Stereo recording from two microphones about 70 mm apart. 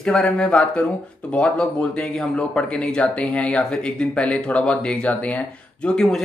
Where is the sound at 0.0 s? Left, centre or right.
Centre.